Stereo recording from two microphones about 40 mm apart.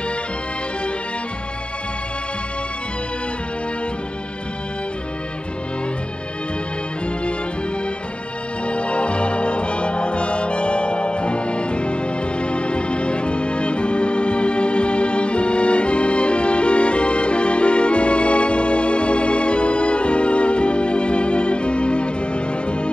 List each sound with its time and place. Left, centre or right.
8.6 s music: left